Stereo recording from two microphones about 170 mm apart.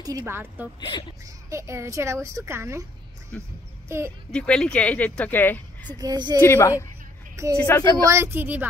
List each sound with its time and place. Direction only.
0.2 s a child's voice: 10° right (ahead or behind)
0.7 s speech: 25° left (ahead or behind)
1.2 s a child's voice: 15° right (ahead or behind)
3.3 s speech: 10° left (ahead or behind)
5.9 s a woman's voice: 25° right (ahead or behind)
6.4 s speech: 15° left (ahead or behind)
7.9 s a child's voice: 20° right (ahead or behind)